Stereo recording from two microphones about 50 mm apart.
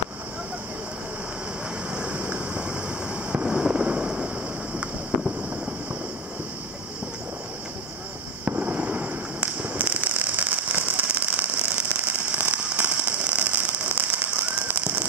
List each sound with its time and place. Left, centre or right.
2.0 s a sound: right
3.4 s fireworks: right
8.5 s fireworks: right